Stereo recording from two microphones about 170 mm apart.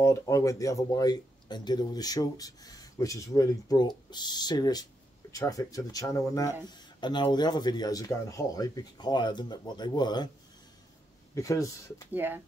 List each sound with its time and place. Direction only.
0.0 s speech: 20° left (ahead or behind)
11.3 s speech: 20° left (ahead or behind)
12.1 s speech: 10° right (ahead or behind)